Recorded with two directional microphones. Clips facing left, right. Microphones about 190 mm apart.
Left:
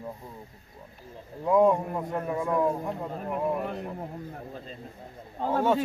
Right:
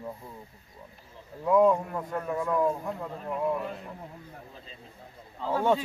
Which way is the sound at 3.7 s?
45° left (ahead or behind).